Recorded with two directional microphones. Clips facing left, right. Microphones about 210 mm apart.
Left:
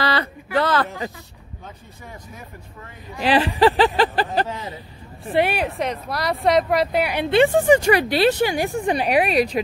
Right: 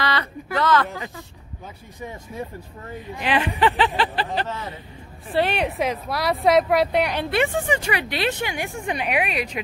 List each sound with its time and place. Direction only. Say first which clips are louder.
0.0 s a sound: left 3 dB; 30° left (ahead or behind)
3.2 s speech: left 5 dB; 35° left (ahead or behind)
4.5 s speech: left 1 dB; 15° left (ahead or behind)
5.6 s speech: right 1 dB; centre (ahead or behind)
7.6 s speech: left 9 dB; 40° left (ahead or behind)